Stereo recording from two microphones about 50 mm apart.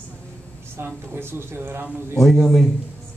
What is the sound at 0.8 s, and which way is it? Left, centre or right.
A woman's voice, right.